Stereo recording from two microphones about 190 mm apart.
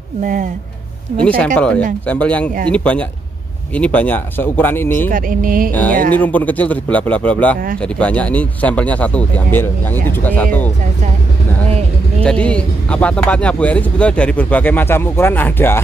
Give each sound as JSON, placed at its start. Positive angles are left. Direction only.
{"t": 0.2, "sound": "music", "side_deg": -40}
{"t": 1.2, "sound": "speech", "side_deg": 5}
{"t": 5.1, "sound": "music", "side_deg": -45}
{"t": 5.7, "sound": "speech", "side_deg": 10}
{"t": 12.2, "sound": "speech", "side_deg": 5}